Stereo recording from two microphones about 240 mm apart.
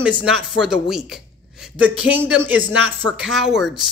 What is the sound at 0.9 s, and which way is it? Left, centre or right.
Speech, centre.